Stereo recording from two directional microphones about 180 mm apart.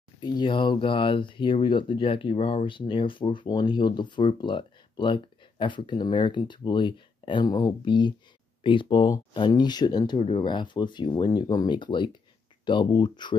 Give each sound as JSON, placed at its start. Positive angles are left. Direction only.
{"t": 0.2, "sound": "speech", "side_deg": 25}